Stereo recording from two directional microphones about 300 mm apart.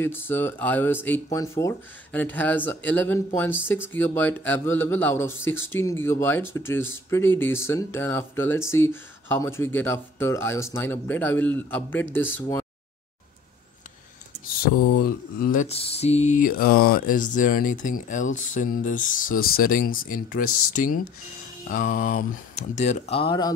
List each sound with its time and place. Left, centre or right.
0.0 s speech: centre
15.0 s mantra: left
20.4 s speech: left
21.6 s mantra: left